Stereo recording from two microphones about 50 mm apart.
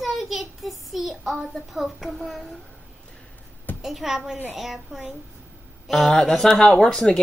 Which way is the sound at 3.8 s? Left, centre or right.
Centre.